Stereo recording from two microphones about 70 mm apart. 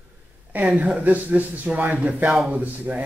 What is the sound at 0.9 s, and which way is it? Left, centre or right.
Speech, right.